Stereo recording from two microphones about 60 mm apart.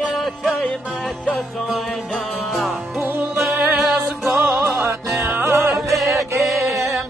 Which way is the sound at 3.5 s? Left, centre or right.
Right.